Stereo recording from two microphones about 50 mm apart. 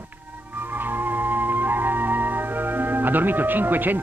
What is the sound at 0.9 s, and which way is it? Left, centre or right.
Music, right.